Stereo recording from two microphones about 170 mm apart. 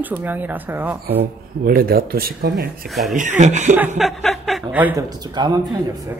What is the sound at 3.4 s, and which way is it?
Speech, 45° right (ahead or behind).